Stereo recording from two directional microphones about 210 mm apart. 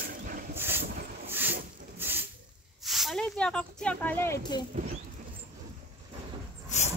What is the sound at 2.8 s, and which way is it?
Speech, centre (ahead or behind).